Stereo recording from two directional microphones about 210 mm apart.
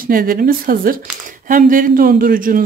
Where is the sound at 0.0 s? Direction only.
45° right (ahead or behind).